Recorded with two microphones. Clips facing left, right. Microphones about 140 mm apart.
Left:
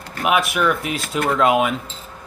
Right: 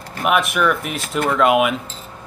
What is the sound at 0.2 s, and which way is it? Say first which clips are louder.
A man's voice: right 1 dB; centre (ahead or behind).